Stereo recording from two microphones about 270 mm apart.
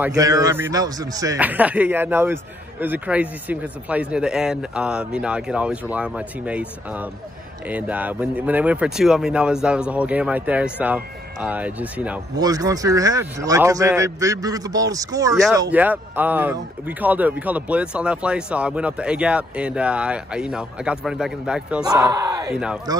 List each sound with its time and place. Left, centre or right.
0.0 s speech: centre
21.8 s speech: centre